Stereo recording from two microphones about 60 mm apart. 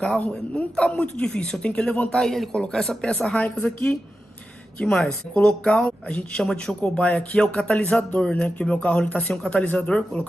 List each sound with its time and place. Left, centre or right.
0.0 s speech: centre
2.0 s a man's voice: centre
4.9 s speech: centre